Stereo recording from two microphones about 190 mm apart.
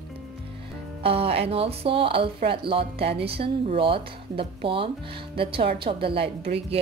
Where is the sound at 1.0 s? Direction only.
30° right (ahead or behind).